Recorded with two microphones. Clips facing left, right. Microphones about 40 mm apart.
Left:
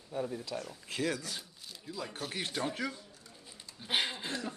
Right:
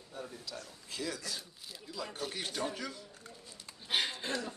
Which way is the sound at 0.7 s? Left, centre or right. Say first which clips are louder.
Left 5 dB; left.